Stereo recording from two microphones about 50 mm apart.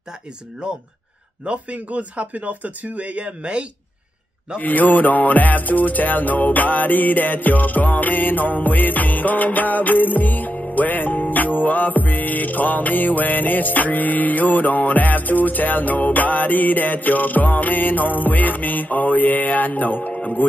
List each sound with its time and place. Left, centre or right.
0.6 s speech: right
4.6 s music: left